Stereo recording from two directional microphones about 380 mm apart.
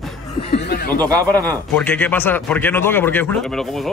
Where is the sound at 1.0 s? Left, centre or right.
Centre.